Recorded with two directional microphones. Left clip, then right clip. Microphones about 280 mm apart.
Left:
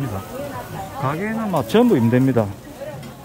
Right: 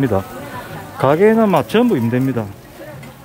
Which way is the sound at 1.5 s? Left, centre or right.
Centre.